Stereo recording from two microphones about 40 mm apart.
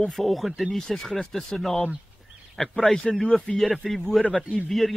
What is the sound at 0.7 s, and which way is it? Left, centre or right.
Speech, centre.